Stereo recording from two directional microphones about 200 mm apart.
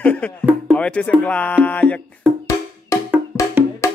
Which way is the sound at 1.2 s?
5° left (ahead or behind).